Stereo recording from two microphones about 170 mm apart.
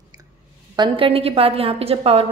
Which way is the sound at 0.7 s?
30° right (ahead or behind).